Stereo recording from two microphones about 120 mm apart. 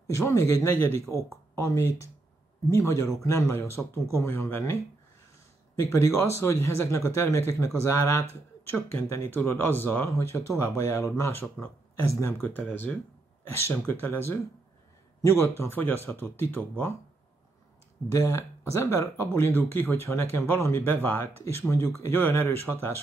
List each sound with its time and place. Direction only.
0.0 s speech: 25° left (ahead or behind)
5.8 s speech: 25° left (ahead or behind)
15.4 s speech: 20° left (ahead or behind)
18.0 s speech: 25° left (ahead or behind)